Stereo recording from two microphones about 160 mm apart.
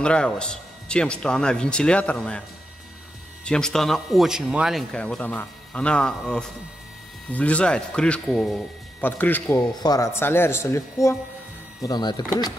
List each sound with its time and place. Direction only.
0.0 s speech: 5° left (ahead or behind)
3.4 s a man's voice: 5° left (ahead or behind); by 12.5 s 25° left (ahead or behind)